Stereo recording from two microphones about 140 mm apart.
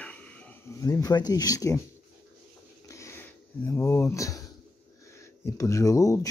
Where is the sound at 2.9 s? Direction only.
20° left (ahead or behind).